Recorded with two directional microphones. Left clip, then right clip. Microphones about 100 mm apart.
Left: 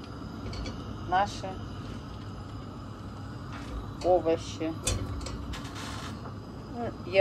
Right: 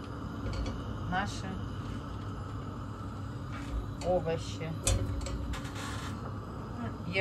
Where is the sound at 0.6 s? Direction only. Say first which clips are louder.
Even; 55° left (ahead or behind).